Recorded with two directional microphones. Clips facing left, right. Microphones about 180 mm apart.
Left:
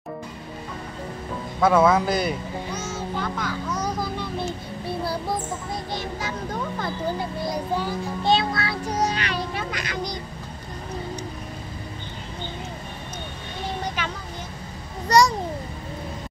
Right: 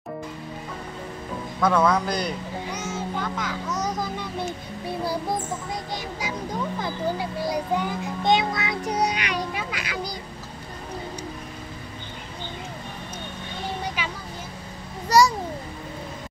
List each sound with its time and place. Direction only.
1.6 s speech: 5° left (ahead or behind)
2.7 s music: 15° right (ahead or behind)
5.9 s a child's voice: 10° right (ahead or behind)
8.2 s a child's voice: 15° right (ahead or behind)
14.0 s a sound: 10° right (ahead or behind)
15.0 s a child's voice: 5° right (ahead or behind)